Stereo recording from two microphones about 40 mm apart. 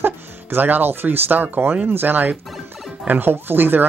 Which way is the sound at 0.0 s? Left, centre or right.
Right.